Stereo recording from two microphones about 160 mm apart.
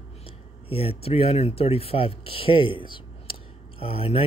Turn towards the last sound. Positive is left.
turn(degrees=35)  # may be behind; listen again after turning